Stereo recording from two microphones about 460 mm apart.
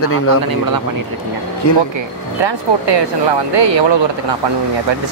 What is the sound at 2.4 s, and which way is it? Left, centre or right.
Speech, right.